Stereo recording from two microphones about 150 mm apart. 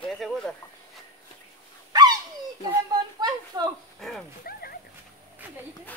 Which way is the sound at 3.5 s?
25° right (ahead or behind).